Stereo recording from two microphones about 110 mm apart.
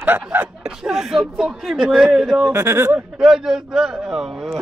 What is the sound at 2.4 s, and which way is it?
Speech, 25° right (ahead or behind).